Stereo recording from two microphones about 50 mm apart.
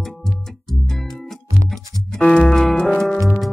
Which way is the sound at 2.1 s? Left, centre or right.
Centre.